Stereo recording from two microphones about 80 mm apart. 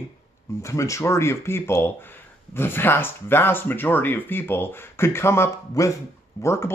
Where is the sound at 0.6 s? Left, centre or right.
Left.